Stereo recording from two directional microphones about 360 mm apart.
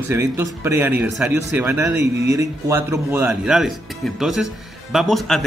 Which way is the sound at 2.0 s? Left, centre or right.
Right.